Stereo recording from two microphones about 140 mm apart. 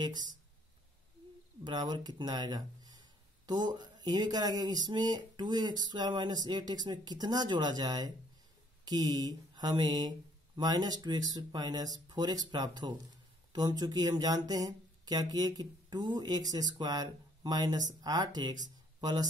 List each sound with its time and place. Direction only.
1.6 s speech: 30° right (ahead or behind)